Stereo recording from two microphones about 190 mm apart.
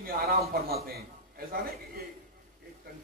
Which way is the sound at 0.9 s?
50° right (ahead or behind).